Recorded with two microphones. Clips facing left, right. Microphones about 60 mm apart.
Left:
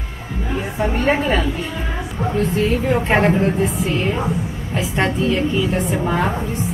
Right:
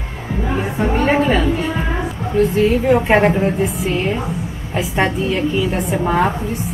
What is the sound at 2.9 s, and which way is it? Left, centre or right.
A woman's voice, centre.